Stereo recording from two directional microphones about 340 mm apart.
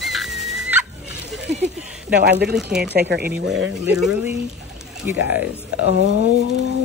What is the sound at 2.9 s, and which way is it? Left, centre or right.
Speech, right.